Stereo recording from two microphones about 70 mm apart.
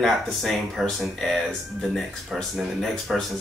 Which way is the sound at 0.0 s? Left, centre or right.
Centre.